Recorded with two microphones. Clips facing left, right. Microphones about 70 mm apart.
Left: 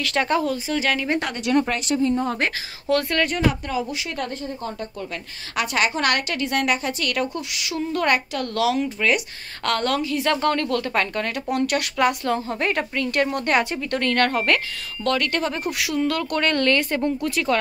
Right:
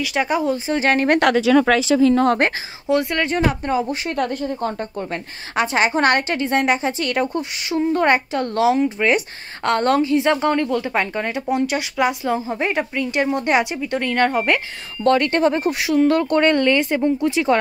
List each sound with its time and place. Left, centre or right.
0.0 s a woman's voice: centre
0.7 s speech: right
1.0 s speech: right
2.0 s speech: right
2.9 s a woman's voice: centre
3.3 s a woman's voice: right